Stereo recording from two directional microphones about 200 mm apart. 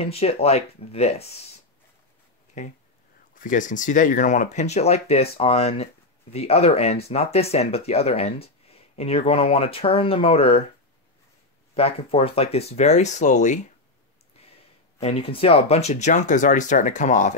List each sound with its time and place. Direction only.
0.0 s speech: 30° left (ahead or behind)
2.6 s speech: 35° left (ahead or behind)
11.7 s speech: 30° left (ahead or behind)
15.0 s speech: 30° left (ahead or behind)